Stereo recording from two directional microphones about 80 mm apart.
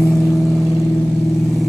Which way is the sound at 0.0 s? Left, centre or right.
Centre.